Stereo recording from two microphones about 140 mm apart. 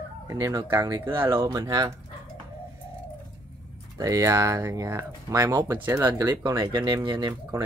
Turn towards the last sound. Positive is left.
turn(degrees=-30)  # may be behind; listen again after turning